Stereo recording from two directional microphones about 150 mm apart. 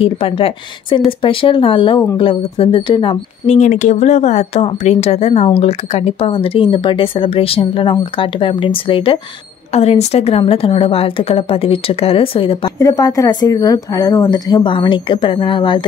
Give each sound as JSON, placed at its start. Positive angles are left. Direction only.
{"t": 0.0, "sound": "speech", "side_deg": 40}
{"t": 3.5, "sound": "a woman's voice", "side_deg": 55}
{"t": 12.7, "sound": "a woman's voice", "side_deg": 20}